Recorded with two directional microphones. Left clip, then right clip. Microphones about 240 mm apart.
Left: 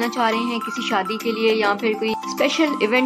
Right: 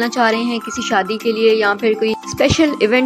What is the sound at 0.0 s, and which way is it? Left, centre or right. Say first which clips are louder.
A woman's voice: right 5 dB; centre.